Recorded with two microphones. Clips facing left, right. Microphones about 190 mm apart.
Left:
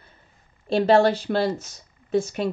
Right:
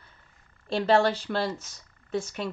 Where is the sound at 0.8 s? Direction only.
50° left (ahead or behind).